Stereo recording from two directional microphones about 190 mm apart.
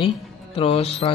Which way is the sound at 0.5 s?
30° left (ahead or behind).